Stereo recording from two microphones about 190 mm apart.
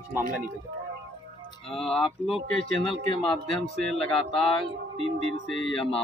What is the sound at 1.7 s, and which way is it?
Speech, centre (ahead or behind).